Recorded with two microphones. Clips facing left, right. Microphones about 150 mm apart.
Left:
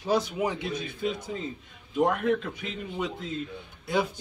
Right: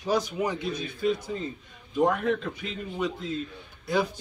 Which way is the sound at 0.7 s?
25° left (ahead or behind).